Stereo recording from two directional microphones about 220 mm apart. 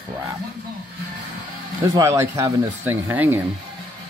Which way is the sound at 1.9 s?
15° right (ahead or behind).